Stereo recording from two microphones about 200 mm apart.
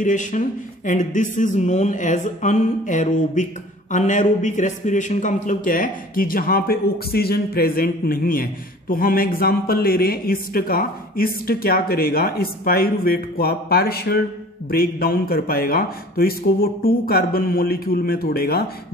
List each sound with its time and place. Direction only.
0.0 s speech: 40° left (ahead or behind)